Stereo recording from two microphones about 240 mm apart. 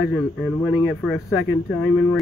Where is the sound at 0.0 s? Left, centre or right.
Centre.